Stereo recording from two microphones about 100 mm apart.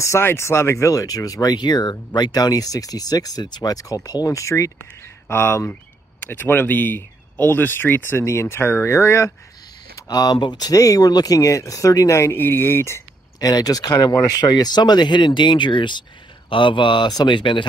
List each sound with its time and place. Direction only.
0.0 s speech: 25° left (ahead or behind)
9.9 s speech: 40° left (ahead or behind); by 13.0 s 25° left (ahead or behind)
13.4 s a man's voice: 40° left (ahead or behind)